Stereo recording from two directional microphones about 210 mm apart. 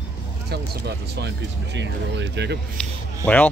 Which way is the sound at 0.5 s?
50° right (ahead or behind).